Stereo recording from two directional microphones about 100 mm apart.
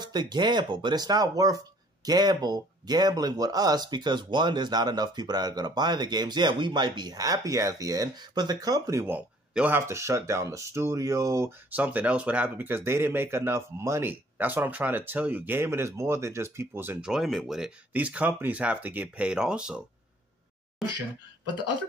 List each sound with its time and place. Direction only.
0.0 s speech: 45° right (ahead or behind)
9.7 s speech: 25° right (ahead or behind)
11.7 s speech: 15° right (ahead or behind)
17.0 s speech: 5° right (ahead or behind)
17.9 s speech: 15° right (ahead or behind)